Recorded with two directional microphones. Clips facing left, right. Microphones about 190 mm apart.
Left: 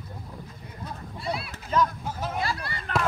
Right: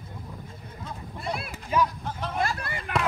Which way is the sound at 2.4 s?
50° right (ahead or behind).